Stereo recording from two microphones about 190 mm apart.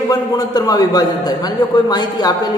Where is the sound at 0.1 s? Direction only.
20° left (ahead or behind).